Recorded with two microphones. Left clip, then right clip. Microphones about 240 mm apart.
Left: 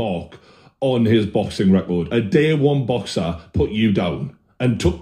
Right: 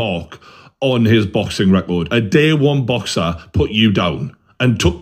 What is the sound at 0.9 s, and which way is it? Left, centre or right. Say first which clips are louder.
Speech: right 2 dB; right.